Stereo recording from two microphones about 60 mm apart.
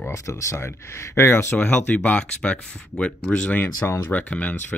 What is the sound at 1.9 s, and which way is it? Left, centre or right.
Speech, centre.